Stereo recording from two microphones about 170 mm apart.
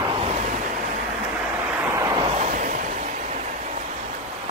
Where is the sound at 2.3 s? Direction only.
45° right (ahead or behind).